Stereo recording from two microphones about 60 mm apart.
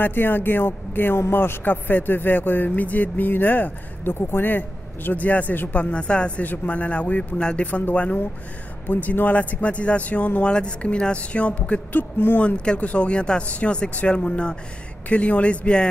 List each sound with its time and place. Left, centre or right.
0.0 s speech: left
12.4 s speech: centre